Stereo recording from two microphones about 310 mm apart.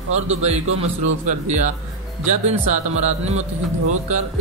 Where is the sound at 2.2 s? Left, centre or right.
Right.